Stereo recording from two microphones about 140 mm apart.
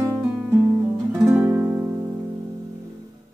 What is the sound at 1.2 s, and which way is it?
Music, 15° right (ahead or behind).